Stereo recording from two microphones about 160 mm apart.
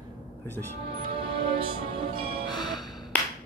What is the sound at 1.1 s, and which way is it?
Music, 35° right (ahead or behind).